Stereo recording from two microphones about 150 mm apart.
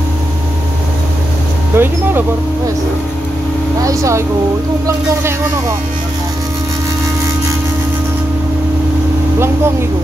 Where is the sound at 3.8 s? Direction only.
20° right (ahead or behind).